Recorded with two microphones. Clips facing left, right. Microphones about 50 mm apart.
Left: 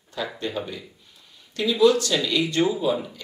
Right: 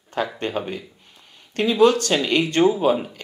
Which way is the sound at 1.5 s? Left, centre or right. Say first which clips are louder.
Right 2 dB; right.